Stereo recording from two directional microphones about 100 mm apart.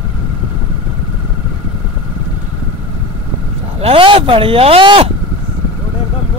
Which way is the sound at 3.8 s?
70° right (ahead or behind).